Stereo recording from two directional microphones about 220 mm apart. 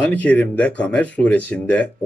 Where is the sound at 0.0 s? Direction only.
5° left (ahead or behind).